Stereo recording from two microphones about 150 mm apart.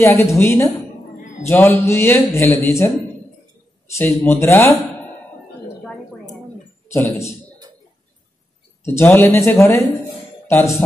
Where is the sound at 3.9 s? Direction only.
15° left (ahead or behind).